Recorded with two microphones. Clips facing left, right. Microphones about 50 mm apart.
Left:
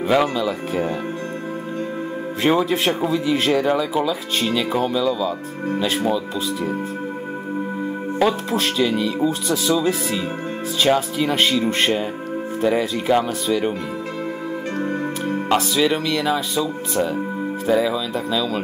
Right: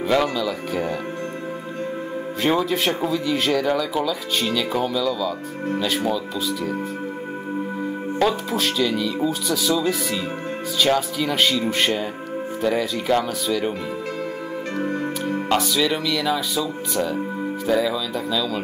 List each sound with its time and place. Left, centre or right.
0.0 s speech: centre
2.4 s speech: centre
3.5 s speech: centre
4.9 s speech: left
5.9 s speech: centre
8.2 s speech: centre
15.5 s speech: centre